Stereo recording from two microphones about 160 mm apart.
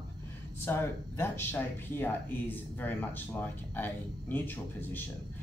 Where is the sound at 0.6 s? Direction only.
15° left (ahead or behind).